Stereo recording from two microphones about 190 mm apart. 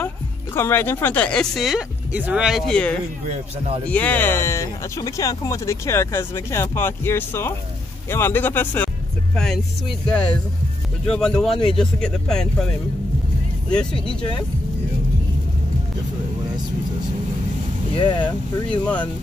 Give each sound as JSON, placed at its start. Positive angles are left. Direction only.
{"t": 0.6, "sound": "speech", "side_deg": 10}
{"t": 3.3, "sound": "a man's voice", "side_deg": -30}
{"t": 3.9, "sound": "speech", "side_deg": 10}
{"t": 11.5, "sound": "speech", "side_deg": 25}
{"t": 11.8, "sound": "speech", "side_deg": 5}
{"t": 13.9, "sound": "speech", "side_deg": 25}
{"t": 17.9, "sound": "speech", "side_deg": 25}